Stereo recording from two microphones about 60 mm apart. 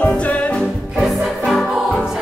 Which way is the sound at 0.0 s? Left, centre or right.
Left.